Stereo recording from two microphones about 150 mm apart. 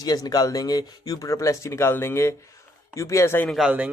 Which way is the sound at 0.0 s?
25° left (ahead or behind).